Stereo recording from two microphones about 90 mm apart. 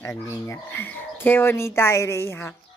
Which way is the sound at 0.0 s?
35° left (ahead or behind).